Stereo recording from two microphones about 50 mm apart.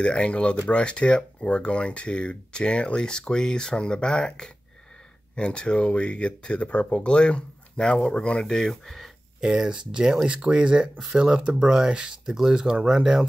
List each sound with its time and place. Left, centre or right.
0.0 s speech: centre
9.4 s speech: centre